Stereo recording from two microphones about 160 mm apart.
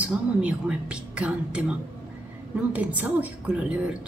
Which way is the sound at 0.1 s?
5° right (ahead or behind).